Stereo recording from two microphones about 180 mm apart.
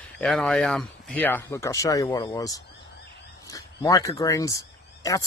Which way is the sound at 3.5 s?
20° left (ahead or behind).